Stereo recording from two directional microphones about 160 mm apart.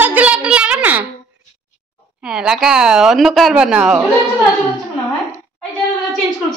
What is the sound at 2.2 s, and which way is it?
A woman's voice, 5° right (ahead or behind).